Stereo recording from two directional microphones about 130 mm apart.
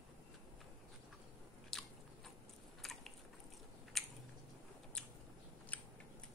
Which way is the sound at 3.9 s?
Centre (ahead or behind).